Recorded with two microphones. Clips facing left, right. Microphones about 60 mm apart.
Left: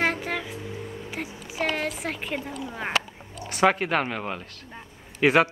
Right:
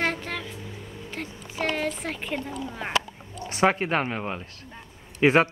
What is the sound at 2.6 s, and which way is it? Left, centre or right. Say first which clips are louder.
Speech: left 1 dB; centre.